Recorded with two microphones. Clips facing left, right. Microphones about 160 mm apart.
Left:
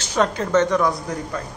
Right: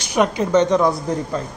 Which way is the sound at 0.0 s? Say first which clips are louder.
Right 3 dB; 15° right (ahead or behind).